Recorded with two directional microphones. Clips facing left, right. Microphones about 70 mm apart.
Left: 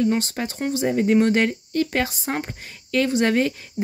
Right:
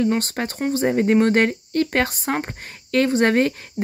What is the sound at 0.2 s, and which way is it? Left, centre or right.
Speech, right.